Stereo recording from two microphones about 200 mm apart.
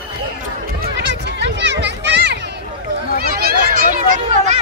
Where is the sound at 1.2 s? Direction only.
60° right (ahead or behind).